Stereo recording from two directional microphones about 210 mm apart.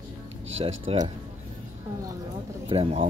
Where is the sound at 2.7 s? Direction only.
25° right (ahead or behind).